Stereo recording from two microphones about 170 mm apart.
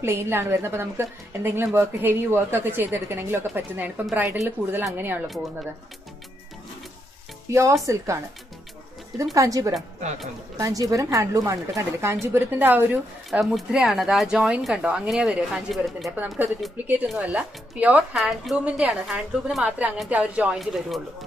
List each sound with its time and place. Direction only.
0.0 s a woman's voice: 15° right (ahead or behind)
7.5 s a woman's voice: 20° right (ahead or behind)
9.3 s a woman's voice: 20° right (ahead or behind); by 21.0 s centre (ahead or behind)